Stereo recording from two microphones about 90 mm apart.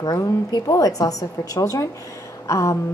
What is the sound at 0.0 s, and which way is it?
A woman's voice, 50° left (ahead or behind).